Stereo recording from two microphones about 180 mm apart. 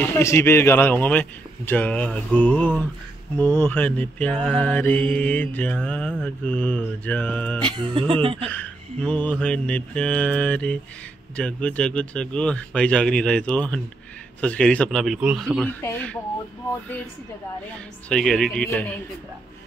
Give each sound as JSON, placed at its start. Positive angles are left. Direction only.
{"t": 0.0, "sound": "mantra", "side_deg": 15}
{"t": 7.6, "sound": "speech", "side_deg": -25}
{"t": 8.5, "sound": "mantra", "side_deg": 5}
{"t": 11.3, "sound": "speech", "side_deg": 5}
{"t": 15.8, "sound": "mantra", "side_deg": 5}
{"t": 18.0, "sound": "speech", "side_deg": 5}